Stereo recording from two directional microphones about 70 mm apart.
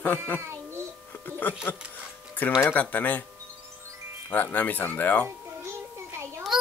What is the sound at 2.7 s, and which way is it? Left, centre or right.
Speech, left.